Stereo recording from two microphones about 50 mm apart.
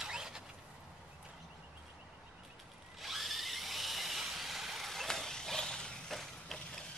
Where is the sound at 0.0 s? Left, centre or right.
Centre.